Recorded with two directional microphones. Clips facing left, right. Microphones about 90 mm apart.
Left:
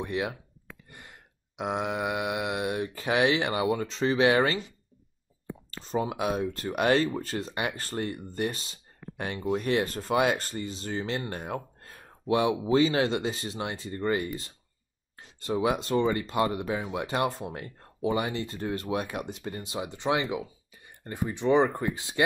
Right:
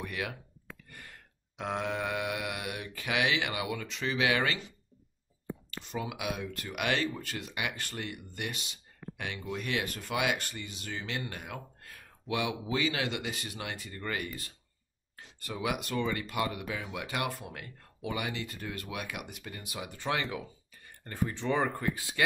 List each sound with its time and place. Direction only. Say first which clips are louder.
0.0 s speech: left 6 dB; 25° left (ahead or behind)
0.8 s a sound: left 1 dB; 20° left (ahead or behind)
5.7 s speech: left 8 dB; 35° left (ahead or behind)